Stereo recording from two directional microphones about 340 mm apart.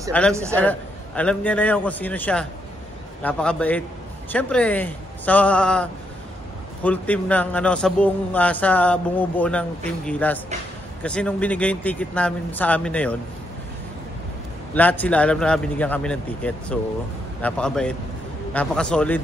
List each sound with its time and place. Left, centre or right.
0.3 s a man's voice: centre
0.6 s a man's voice: centre
14.7 s a man's voice: centre